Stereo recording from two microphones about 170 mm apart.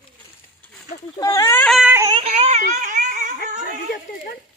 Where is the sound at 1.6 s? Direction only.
Centre (ahead or behind).